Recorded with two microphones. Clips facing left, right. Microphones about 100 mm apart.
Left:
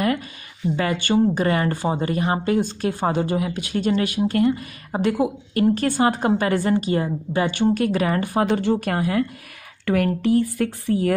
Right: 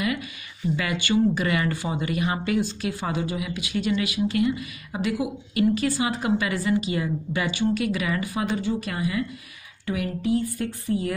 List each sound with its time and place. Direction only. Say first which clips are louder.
0.7 s a woman's voice: left 4 dB; 40° left (ahead or behind)
8.5 s speech: left 6 dB; 65° left (ahead or behind)
9.8 s speech: left 6 dB; 65° left (ahead or behind)